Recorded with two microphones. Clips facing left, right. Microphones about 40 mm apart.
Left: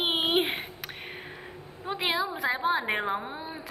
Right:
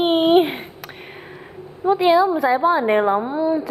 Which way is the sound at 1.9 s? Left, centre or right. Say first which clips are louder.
Right 14 dB; centre.